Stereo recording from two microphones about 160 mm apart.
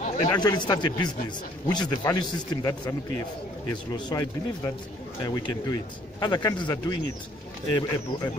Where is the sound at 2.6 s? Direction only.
15° left (ahead or behind).